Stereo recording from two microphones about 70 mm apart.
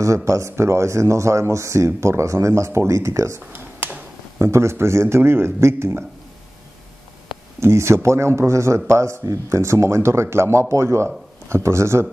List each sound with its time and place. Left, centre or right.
0.0 s speech: right
7.6 s speech: right